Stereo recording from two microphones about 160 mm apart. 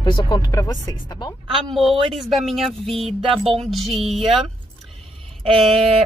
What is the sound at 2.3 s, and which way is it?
Speech, centre (ahead or behind).